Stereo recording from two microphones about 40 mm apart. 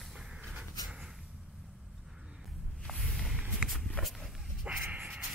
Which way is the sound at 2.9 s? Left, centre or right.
Centre.